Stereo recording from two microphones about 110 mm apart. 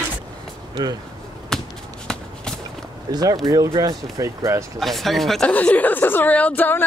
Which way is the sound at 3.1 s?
35° right (ahead or behind).